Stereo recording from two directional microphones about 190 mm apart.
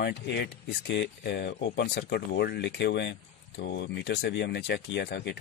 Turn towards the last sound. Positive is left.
turn(degrees=60)  # may be behind; listen again after turning